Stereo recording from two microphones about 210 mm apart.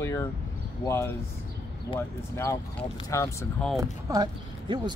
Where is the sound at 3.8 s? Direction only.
15° right (ahead or behind).